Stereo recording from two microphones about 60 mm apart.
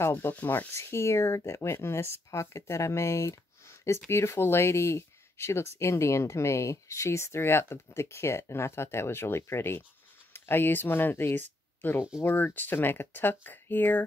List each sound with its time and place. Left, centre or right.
0.0 s speech: left
0.3 s speech: left